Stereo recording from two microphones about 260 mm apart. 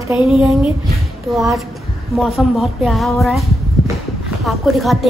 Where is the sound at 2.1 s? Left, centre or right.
Centre.